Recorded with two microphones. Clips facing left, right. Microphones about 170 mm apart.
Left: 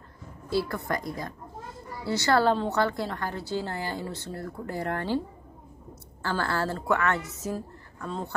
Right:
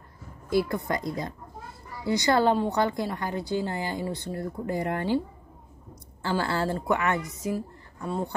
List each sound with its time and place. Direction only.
0.5 s a woman's voice: 15° right (ahead or behind)
6.2 s a woman's voice: 15° right (ahead or behind)